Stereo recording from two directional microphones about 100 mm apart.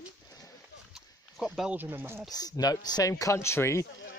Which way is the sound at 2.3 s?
40° left (ahead or behind).